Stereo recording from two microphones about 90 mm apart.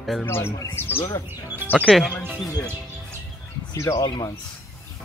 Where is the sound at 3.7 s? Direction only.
35° left (ahead or behind).